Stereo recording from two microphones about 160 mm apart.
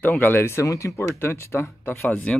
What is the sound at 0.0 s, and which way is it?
Speech, 10° left (ahead or behind).